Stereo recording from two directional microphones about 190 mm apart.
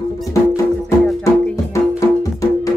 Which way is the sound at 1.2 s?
10° left (ahead or behind).